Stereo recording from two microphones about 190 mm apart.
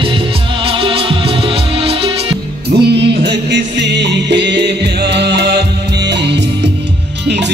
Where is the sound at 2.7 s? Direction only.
60° right (ahead or behind).